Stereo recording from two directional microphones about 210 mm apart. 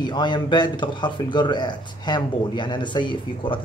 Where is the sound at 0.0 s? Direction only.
20° left (ahead or behind).